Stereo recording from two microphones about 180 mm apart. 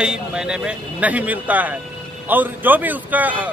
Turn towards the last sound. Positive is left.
turn(degrees=-10)  # may be behind; listen again after turning